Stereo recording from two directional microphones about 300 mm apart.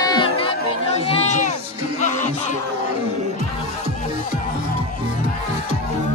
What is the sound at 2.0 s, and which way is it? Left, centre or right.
Music, left.